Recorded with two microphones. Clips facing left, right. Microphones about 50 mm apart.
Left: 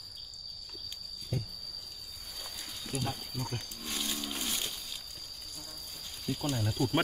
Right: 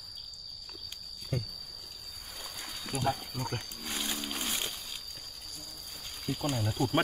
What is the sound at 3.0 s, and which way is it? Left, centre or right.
Livestock, right.